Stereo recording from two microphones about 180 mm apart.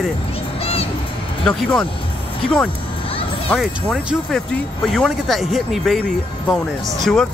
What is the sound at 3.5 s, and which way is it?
Speech, centre (ahead or behind).